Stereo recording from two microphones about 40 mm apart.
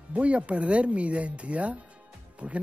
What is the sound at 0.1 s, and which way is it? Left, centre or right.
Speech, right.